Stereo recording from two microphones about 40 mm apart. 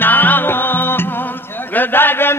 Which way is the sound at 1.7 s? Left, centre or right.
Left.